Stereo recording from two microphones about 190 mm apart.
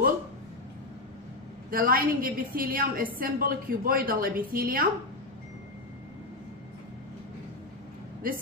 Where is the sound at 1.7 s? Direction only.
50° right (ahead or behind).